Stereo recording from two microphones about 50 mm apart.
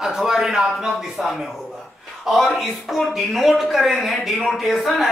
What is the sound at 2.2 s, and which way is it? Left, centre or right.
Speech, centre.